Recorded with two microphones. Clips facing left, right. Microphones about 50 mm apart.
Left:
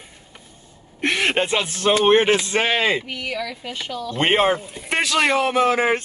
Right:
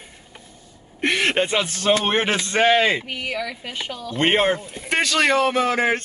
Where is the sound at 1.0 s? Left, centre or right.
Centre.